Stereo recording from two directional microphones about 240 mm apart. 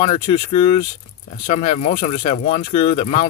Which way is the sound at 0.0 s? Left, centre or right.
Left.